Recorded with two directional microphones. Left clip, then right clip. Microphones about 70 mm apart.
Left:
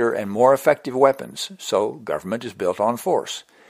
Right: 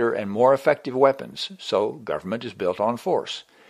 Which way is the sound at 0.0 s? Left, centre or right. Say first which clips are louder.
Left 2 dB; left.